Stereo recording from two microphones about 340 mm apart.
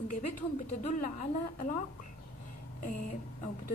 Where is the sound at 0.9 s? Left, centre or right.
Left.